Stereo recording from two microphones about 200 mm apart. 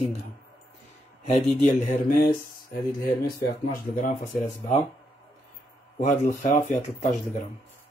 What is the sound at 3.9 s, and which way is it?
Speech, 40° left (ahead or behind).